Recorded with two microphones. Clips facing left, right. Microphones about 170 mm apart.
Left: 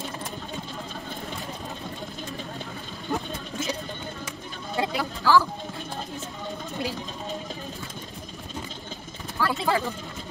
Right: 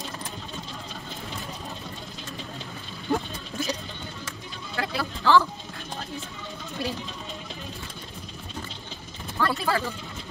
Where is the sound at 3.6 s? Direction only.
20° left (ahead or behind).